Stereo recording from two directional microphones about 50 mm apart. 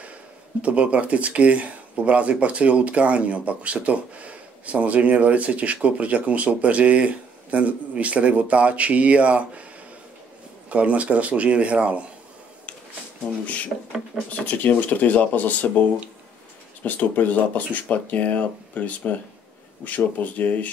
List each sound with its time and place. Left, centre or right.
0.6 s speech: right
10.7 s speech: right
14.3 s speech: left
16.8 s speech: left
20.3 s speech: left